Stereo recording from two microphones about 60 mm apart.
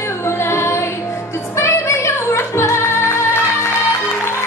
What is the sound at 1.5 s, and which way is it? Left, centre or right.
Music, left.